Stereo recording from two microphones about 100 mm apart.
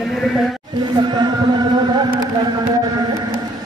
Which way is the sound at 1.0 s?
45° right (ahead or behind).